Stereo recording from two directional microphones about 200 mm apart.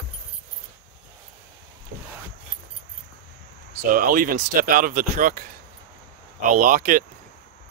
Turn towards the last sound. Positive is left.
turn(degrees=-40)  # may be behind; listen again after turning